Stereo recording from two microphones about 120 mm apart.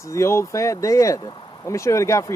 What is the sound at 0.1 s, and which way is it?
Speech, 25° left (ahead or behind).